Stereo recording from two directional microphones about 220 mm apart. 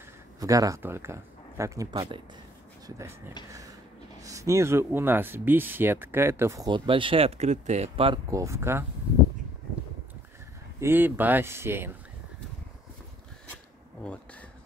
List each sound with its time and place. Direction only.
0.4 s speech: 15° right (ahead or behind)
4.2 s speech: 15° right (ahead or behind)
10.8 s speech: 10° right (ahead or behind)